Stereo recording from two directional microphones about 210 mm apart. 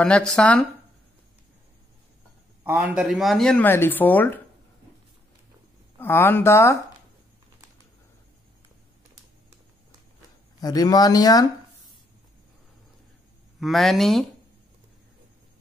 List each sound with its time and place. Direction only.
0.0 s speech: 5° left (ahead or behind)
2.6 s speech: 10° right (ahead or behind); by 4.4 s 10° left (ahead or behind)
5.9 s speech: 10° left (ahead or behind)
10.6 s speech: 20° left (ahead or behind)
13.6 s speech: centre (ahead or behind)